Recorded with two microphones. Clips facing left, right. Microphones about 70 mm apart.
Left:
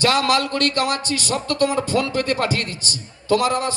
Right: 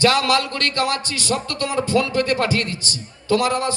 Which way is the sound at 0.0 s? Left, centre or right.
Left.